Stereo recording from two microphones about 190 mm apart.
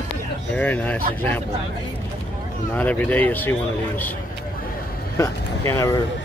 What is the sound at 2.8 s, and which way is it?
Speech, 10° left (ahead or behind).